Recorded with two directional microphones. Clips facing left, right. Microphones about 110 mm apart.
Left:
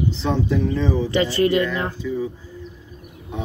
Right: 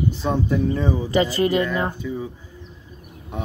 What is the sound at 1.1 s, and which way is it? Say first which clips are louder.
Speech: even; 35° right (ahead or behind).